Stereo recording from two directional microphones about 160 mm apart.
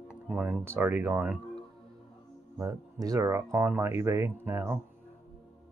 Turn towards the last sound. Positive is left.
turn(degrees=-15)  # may be behind; listen again after turning